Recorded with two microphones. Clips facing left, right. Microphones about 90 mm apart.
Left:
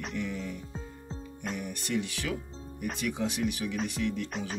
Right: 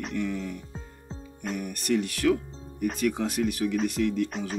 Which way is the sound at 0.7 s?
Centre (ahead or behind).